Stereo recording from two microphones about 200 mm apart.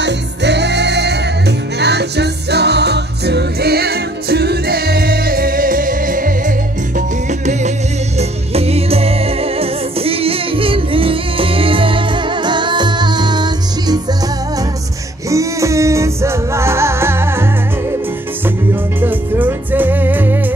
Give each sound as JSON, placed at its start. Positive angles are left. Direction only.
{"t": 0.0, "sound": "music", "side_deg": -60}
{"t": 8.2, "sound": "music", "side_deg": -30}
{"t": 15.2, "sound": "music", "side_deg": -15}
{"t": 18.9, "sound": "music", "side_deg": -10}